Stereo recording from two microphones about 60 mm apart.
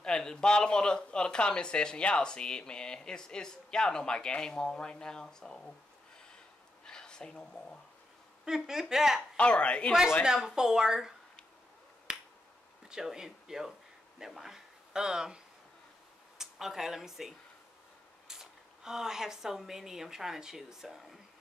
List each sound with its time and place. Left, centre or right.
0.0 s speech: centre
6.9 s a woman's voice: centre
8.5 s speech: centre
9.4 s speech: centre
10.2 s speech: centre
12.1 s finger snapping: centre
12.8 s speech: centre
18.3 s a woman's voice: centre